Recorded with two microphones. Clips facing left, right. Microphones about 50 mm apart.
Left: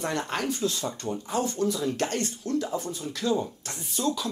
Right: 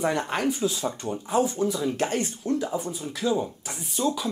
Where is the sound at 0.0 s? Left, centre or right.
Centre.